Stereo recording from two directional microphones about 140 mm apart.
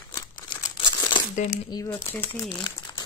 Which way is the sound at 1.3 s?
65° left (ahead or behind).